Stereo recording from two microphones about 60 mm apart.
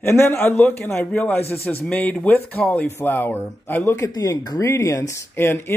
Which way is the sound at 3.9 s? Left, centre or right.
Left.